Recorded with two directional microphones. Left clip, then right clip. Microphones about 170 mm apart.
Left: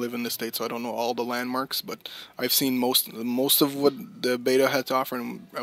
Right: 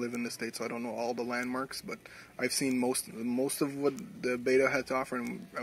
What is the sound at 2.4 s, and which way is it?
Speech, 60° left (ahead or behind).